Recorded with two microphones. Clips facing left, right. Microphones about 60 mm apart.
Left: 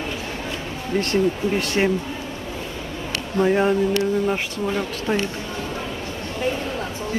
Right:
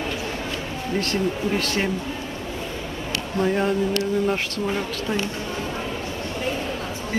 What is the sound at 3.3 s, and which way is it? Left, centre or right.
Speech, centre.